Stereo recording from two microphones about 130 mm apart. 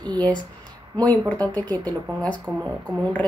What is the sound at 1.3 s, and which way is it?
Speech, 10° left (ahead or behind).